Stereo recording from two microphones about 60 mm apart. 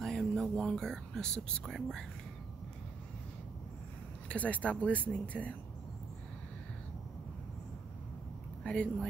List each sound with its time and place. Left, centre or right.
0.0 s speech: centre
4.3 s speech: left
8.6 s speech: left